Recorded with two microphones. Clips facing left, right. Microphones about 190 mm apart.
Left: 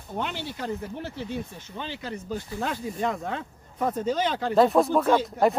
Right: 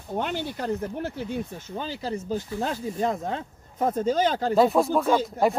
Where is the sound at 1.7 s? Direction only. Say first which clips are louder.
Right 4 dB; 35° right (ahead or behind).